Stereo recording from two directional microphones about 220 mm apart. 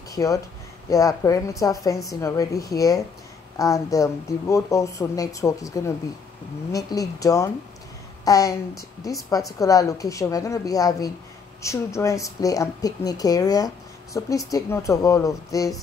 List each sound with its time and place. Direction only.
0.1 s speech: 15° left (ahead or behind)
9.6 s speech: 15° left (ahead or behind)